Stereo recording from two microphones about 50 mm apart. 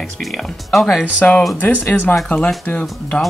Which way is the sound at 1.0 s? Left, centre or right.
Left.